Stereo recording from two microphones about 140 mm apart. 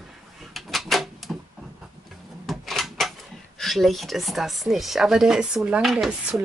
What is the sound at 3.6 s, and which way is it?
Speech, centre (ahead or behind).